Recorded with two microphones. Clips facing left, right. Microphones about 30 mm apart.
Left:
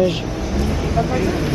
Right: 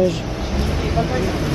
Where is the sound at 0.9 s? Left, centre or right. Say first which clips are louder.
Even; right.